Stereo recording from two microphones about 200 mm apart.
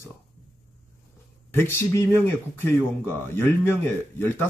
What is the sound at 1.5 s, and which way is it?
Speech, 10° left (ahead or behind).